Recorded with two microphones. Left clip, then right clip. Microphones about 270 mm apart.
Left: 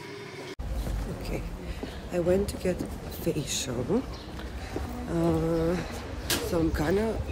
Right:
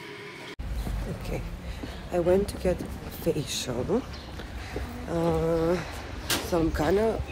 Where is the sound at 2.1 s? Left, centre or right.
Centre.